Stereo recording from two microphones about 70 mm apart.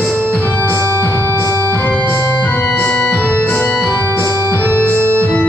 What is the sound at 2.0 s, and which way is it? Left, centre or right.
Organ, left.